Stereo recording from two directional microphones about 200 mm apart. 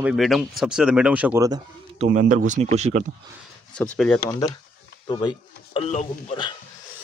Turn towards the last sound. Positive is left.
turn(degrees=40)  # may be behind; listen again after turning